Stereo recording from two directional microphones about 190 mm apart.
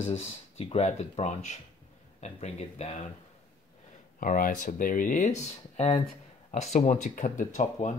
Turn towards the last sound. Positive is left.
turn(degrees=40)  # may be behind; listen again after turning